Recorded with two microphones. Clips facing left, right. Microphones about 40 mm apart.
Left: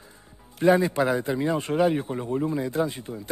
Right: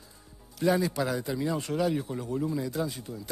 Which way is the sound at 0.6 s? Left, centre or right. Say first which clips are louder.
Left 6 dB; left.